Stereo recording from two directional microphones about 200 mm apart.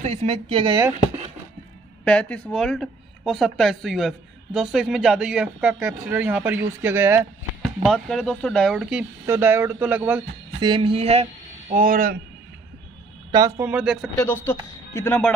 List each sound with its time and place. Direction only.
0.0 s speech: 30° right (ahead or behind)
2.0 s speech: 5° left (ahead or behind); by 7.2 s 10° right (ahead or behind)
7.6 s speech: centre (ahead or behind)
10.6 s speech: 25° right (ahead or behind)
11.7 s speech: 45° right (ahead or behind)
13.3 s speech: 20° right (ahead or behind)
13.7 s speech: 5° right (ahead or behind)
14.1 s speech: 10° left (ahead or behind)